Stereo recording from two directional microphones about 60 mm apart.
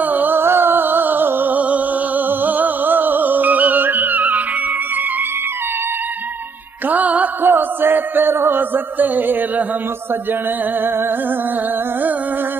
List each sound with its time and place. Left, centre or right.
0.0 s music: right
6.9 s music: right